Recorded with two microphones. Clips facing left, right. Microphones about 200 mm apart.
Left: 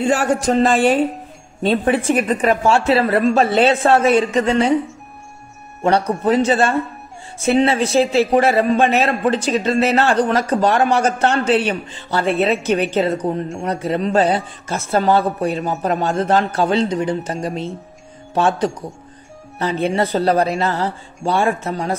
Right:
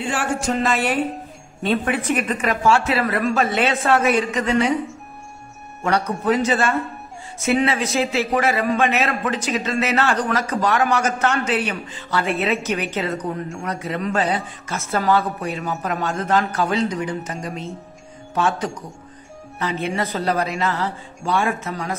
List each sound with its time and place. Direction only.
0.0 s a man's voice: 40° left (ahead or behind)
5.9 s a man's voice: 30° left (ahead or behind)